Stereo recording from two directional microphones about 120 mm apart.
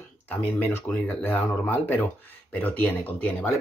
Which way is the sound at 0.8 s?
15° left (ahead or behind).